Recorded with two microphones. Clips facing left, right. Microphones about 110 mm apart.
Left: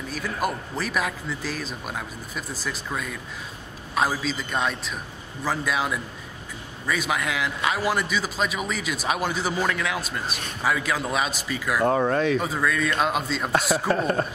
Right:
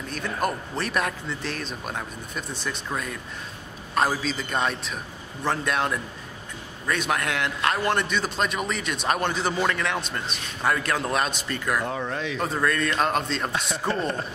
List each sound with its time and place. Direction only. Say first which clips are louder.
0.1 s a man's voice: even; 5° left (ahead or behind)
11.8 s speech: left 8 dB; 50° left (ahead or behind)
12.4 s a man's voice: even; centre (ahead or behind)
13.8 s speech: left 3 dB; 50° left (ahead or behind)